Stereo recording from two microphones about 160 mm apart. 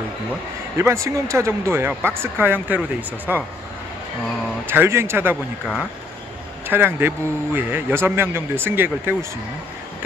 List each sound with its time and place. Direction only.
0.7 s a man's voice: 15° right (ahead or behind)
4.6 s a man's voice: 15° right (ahead or behind)
6.7 s a man's voice: 15° right (ahead or behind)